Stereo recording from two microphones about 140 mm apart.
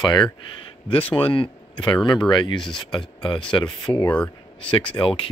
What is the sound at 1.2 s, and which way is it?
Speech, 40° left (ahead or behind).